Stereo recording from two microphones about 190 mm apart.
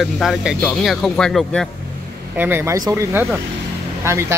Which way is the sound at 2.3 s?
10° right (ahead or behind).